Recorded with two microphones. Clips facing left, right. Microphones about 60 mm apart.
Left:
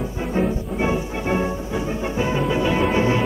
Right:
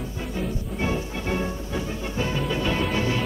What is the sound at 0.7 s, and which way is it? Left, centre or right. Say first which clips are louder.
Music: left 3 dB; left.